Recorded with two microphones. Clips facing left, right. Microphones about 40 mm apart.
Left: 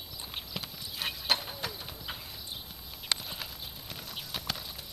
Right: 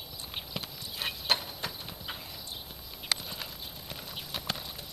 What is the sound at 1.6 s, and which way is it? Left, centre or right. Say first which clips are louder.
Clip-clop: even; centre.